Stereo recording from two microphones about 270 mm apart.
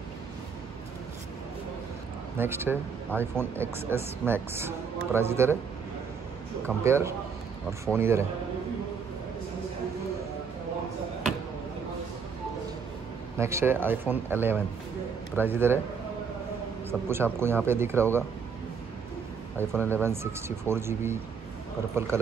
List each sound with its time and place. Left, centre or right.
2.3 s speech: centre
6.8 s speech: centre
13.4 s speech: centre
17.1 s speech: centre
19.7 s speech: centre
20.0 s speech: centre